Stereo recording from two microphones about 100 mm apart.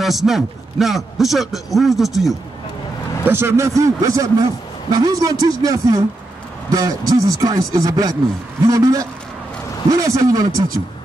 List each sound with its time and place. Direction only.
0.0 s a man's voice: centre (ahead or behind)
3.3 s speech: 25° right (ahead or behind)